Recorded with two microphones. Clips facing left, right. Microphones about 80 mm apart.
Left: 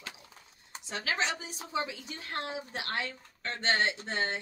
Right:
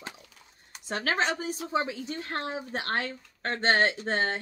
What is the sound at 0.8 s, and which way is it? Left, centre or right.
Speech, right.